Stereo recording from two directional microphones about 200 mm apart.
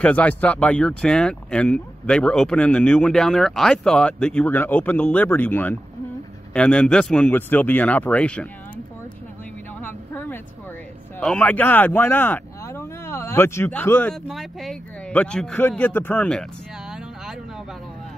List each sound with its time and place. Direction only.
0.0 s speech: 5° left (ahead or behind)
9.8 s vehicle: 10° left (ahead or behind)
11.1 s speech: 5° left (ahead or behind)